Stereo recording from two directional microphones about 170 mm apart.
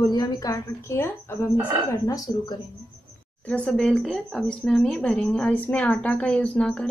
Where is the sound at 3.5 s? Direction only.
5° left (ahead or behind).